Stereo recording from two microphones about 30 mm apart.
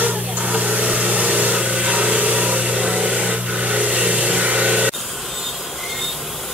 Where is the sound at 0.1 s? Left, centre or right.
Right.